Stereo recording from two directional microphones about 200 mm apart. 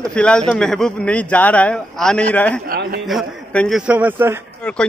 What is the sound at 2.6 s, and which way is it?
Speech, 50° right (ahead or behind).